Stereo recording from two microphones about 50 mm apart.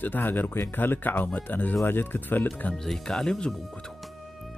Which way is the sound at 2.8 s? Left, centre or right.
Centre.